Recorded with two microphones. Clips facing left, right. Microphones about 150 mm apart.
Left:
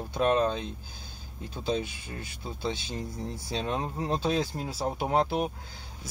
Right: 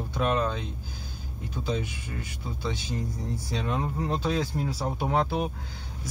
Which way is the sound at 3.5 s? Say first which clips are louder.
Right 1 dB; 25° left (ahead or behind).